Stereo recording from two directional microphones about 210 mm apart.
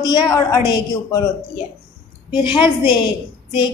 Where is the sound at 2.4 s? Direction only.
20° left (ahead or behind).